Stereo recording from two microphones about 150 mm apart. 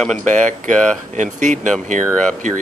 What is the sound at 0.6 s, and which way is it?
Speech, 55° right (ahead or behind).